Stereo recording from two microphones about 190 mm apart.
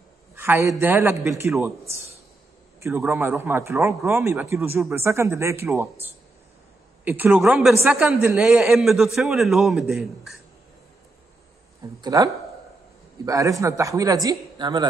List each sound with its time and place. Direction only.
0.4 s speech: 15° right (ahead or behind)
2.8 s a man's voice: 15° right (ahead or behind)
12.0 s speech: 20° right (ahead or behind)